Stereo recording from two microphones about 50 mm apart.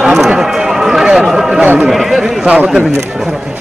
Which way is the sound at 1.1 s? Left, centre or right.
Centre.